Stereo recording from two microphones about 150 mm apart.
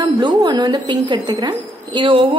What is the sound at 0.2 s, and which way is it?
A woman's voice, 25° right (ahead or behind).